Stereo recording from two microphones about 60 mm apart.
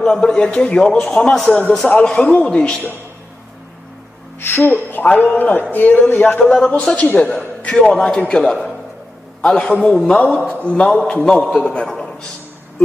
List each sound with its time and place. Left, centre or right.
0.0 s a man's voice: centre
1.9 s a man's voice: left
4.4 s a man's voice: left
4.7 s a man's voice: left